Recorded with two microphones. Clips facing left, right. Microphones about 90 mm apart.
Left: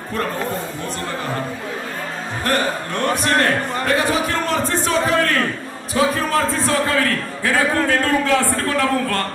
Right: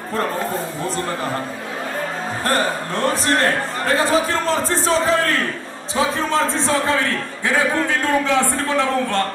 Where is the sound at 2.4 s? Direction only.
35° right (ahead or behind).